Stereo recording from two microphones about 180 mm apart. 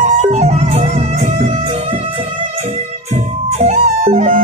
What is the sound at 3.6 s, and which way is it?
Music, 40° right (ahead or behind).